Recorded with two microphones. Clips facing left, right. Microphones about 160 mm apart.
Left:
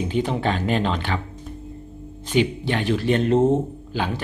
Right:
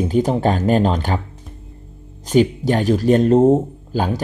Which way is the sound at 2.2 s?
40° right (ahead or behind).